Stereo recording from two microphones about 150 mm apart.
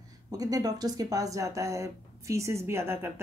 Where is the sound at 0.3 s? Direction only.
25° right (ahead or behind).